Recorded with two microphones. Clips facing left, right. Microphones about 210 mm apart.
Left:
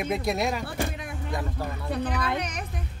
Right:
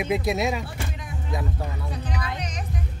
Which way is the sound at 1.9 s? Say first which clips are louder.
Left 4 dB; 60° left (ahead or behind).